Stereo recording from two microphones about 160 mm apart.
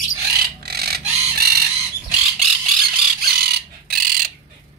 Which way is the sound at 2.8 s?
75° right (ahead or behind).